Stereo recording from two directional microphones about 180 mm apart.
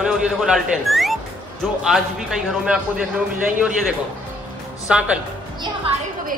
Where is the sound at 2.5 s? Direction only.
5° right (ahead or behind).